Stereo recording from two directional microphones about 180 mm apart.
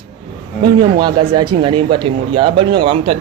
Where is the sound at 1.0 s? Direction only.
25° right (ahead or behind).